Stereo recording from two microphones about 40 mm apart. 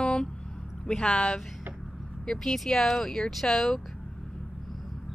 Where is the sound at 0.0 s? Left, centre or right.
Left.